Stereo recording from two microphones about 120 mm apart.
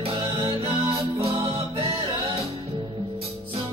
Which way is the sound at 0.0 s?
45° right (ahead or behind).